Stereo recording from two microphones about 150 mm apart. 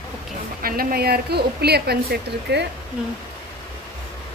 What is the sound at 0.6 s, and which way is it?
A woman's voice, 85° right.